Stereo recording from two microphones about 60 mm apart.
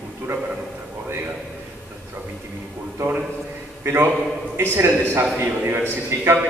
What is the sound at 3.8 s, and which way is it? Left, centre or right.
A man's voice, right.